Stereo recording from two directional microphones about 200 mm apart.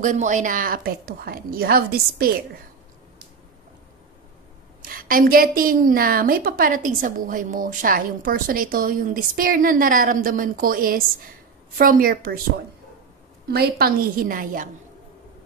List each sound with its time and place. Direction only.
0.0 s a woman's voice: 40° right (ahead or behind)
4.8 s a woman's voice: 45° right (ahead or behind)
13.5 s a woman's voice: 50° right (ahead or behind)